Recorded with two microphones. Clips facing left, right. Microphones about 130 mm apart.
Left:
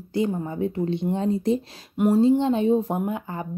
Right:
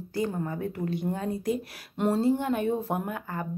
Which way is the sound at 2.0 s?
15° left (ahead or behind).